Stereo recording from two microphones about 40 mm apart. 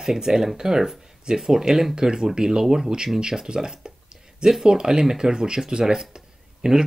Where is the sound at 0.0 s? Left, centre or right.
Centre.